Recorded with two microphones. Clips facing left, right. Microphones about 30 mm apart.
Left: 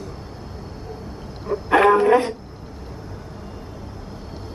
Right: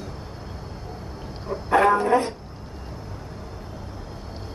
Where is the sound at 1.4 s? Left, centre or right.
Left.